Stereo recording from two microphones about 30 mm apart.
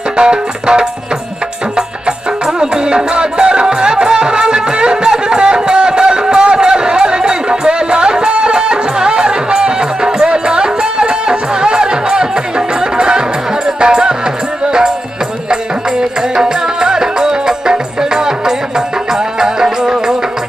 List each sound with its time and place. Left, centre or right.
0.2 s music: right